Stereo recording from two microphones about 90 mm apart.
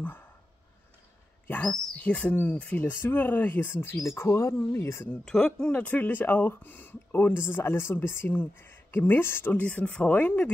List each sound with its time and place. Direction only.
0.0 s a sound: 20° left (ahead or behind)
2.0 s speech: 15° left (ahead or behind)
5.2 s speech: 10° left (ahead or behind)